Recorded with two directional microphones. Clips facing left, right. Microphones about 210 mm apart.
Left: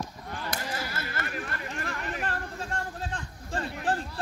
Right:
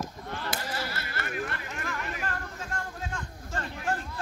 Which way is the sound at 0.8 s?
50° left (ahead or behind).